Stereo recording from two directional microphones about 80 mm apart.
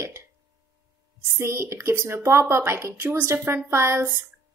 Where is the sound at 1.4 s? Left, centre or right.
Right.